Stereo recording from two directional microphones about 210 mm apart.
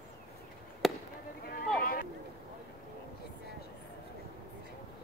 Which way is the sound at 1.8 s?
45° left (ahead or behind).